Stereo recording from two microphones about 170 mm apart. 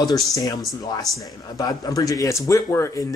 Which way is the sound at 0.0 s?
20° left (ahead or behind).